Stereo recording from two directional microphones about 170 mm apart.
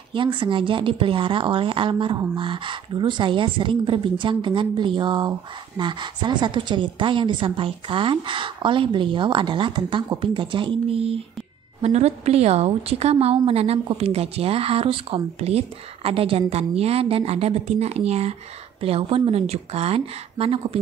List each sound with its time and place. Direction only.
0.1 s a woman's voice: 30° right (ahead or behind)